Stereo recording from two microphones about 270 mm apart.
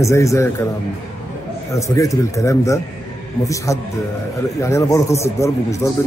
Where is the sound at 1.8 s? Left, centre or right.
Centre.